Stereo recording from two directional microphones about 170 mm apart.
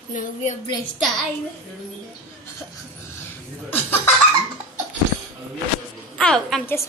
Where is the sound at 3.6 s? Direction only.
10° left (ahead or behind).